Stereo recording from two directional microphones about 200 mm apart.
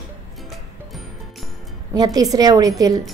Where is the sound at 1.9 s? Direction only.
20° right (ahead or behind).